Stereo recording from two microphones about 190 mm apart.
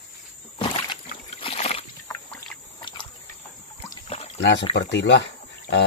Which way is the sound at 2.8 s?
25° left (ahead or behind).